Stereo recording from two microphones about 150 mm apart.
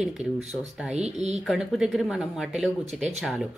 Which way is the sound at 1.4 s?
5° right (ahead or behind).